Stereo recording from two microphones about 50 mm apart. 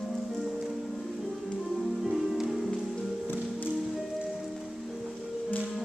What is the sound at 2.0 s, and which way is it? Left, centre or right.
Music, centre.